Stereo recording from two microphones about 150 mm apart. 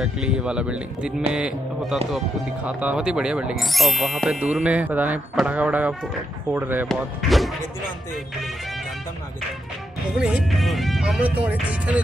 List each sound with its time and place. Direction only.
0.0 s speech: 5° right (ahead or behind)
6.9 s speech: centre (ahead or behind)
10.1 s speech: centre (ahead or behind)